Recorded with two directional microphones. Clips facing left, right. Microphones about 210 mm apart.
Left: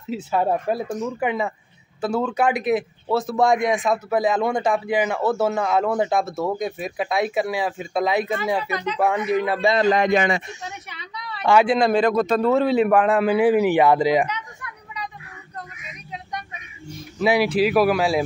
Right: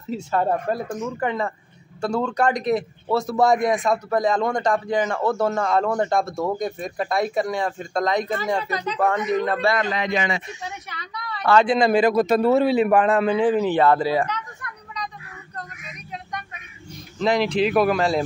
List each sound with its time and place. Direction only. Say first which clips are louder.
0.1 s a man's voice: left 1 dB; 5° left (ahead or behind)
9.8 s speech: left 6 dB; 45° left (ahead or behind)
11.6 s a man's voice: even; centre (ahead or behind)
17.2 s a man's voice: left 1 dB; 10° left (ahead or behind)